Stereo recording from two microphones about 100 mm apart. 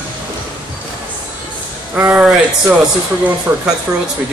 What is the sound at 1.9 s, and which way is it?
Speech, 15° right (ahead or behind).